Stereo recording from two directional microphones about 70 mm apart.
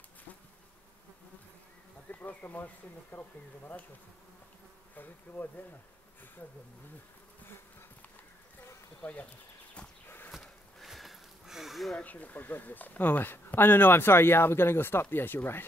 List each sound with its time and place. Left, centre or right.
2.0 s speech: left
4.9 s speech: left
9.0 s speech: left
10.0 s walk: left
10.3 s a sound: centre
11.9 s speech: left